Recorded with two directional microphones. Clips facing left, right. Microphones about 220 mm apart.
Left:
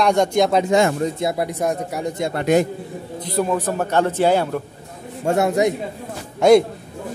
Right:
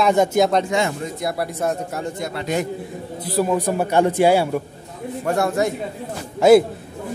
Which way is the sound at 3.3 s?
10° right (ahead or behind).